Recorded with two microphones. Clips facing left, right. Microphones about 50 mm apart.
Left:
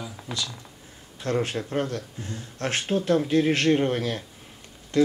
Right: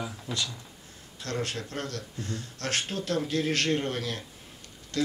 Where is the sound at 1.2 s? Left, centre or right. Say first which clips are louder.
Left 6 dB; centre.